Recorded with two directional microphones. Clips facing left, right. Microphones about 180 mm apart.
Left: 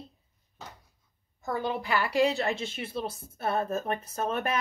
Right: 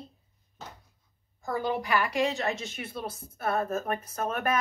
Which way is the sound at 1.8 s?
30° left (ahead or behind).